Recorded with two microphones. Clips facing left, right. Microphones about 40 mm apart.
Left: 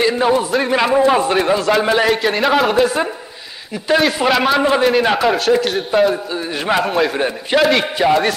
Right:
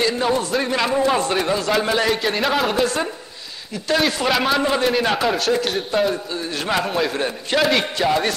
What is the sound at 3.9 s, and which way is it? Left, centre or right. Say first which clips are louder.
Speech: left 5 dB; centre.